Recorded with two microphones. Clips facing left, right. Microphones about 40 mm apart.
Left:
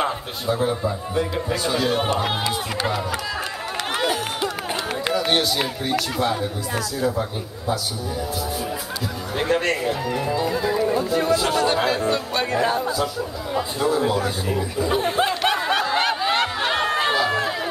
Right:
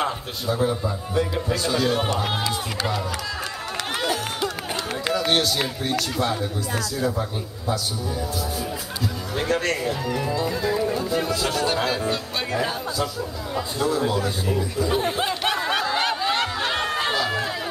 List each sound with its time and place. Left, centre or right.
0.0 s speech: centre
4.0 s run: left
5.1 s speech: centre
9.4 s speech: left
10.4 s speech: centre
15.0 s a sound: centre
15.8 s snicker: centre
16.2 s chatter: left; by 17.6 s centre